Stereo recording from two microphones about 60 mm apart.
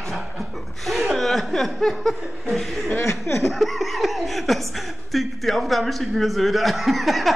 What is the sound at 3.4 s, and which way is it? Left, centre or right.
Chuckle, centre.